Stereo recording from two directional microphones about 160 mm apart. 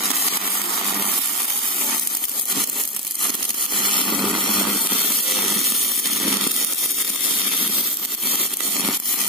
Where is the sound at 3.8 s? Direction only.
30° left (ahead or behind).